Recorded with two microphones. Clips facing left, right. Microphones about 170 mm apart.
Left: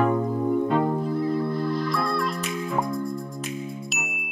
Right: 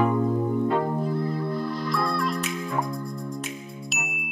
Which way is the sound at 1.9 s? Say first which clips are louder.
Even; centre (ahead or behind).